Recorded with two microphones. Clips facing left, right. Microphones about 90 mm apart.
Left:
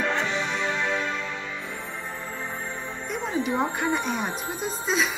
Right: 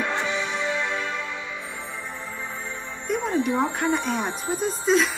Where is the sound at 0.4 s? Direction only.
55° left (ahead or behind).